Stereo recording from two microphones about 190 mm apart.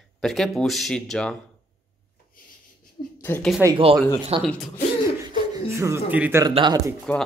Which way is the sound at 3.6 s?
25° right (ahead or behind).